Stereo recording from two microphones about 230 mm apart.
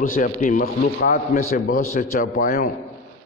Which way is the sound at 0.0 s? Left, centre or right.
Left.